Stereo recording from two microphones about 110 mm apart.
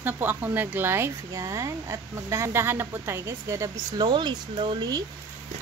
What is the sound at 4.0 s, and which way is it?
Speech, 40° right (ahead or behind).